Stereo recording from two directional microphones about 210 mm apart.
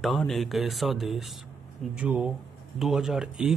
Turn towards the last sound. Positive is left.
turn(degrees=0)  # may be behind; listen again after turning